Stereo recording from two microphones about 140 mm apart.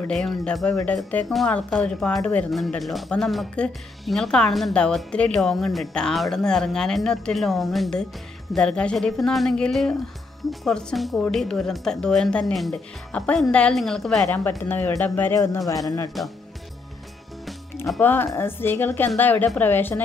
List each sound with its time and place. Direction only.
0.1 s speech: centre (ahead or behind)
14.6 s speech: 15° left (ahead or behind)
16.2 s speech: centre (ahead or behind)
18.0 s speech: 15° left (ahead or behind)